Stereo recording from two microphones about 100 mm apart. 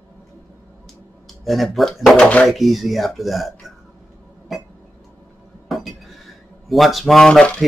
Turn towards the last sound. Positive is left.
turn(degrees=10)  # may be behind; listen again after turning